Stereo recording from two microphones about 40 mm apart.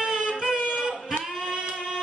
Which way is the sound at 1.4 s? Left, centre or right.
Centre.